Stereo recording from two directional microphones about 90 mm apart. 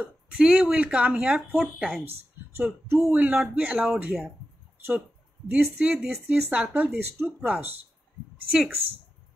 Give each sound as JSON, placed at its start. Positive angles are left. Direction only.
{"t": 0.0, "sound": "speech", "side_deg": -10}
{"t": 2.5, "sound": "speech", "side_deg": -25}
{"t": 5.5, "sound": "speech", "side_deg": -10}
{"t": 7.1, "sound": "speech", "side_deg": -30}
{"t": 8.5, "sound": "speech", "side_deg": -10}